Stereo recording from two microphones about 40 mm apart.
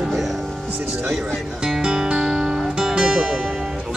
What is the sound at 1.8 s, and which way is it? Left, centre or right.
Music, right.